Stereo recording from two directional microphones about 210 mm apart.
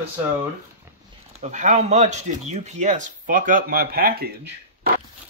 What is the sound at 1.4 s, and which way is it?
Speech, 35° right (ahead or behind).